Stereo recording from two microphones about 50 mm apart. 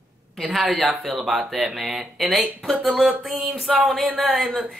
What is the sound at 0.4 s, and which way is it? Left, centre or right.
Speech, centre.